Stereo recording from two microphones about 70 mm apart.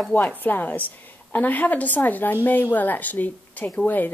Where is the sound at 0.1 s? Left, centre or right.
Left.